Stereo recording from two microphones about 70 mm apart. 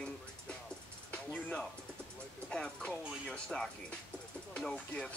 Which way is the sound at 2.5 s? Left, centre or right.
Centre.